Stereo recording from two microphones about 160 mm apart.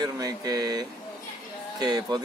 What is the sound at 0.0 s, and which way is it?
Speech, 25° right (ahead or behind).